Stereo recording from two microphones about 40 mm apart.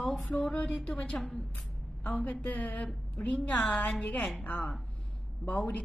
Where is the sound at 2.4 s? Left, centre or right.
Left.